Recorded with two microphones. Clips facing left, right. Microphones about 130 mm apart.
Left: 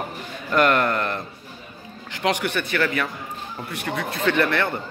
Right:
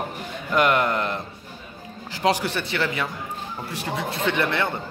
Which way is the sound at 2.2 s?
30° right (ahead or behind).